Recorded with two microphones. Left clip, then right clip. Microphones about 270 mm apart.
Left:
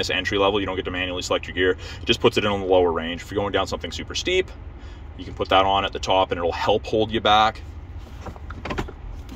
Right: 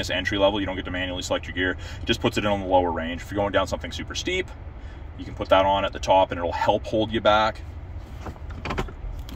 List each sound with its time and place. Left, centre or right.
0.0 s speech: centre